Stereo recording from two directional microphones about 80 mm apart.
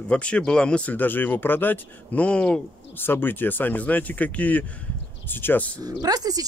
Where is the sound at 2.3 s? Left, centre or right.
Centre.